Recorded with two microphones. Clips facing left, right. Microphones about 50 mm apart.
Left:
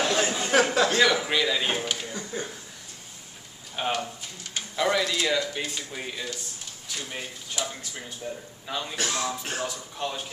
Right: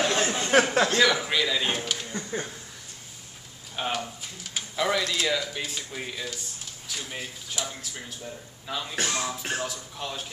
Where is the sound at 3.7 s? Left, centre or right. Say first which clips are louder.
Left 2 dB; centre.